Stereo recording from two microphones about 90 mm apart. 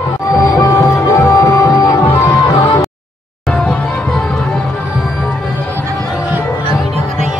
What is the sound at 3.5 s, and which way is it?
Music, 10° left (ahead or behind).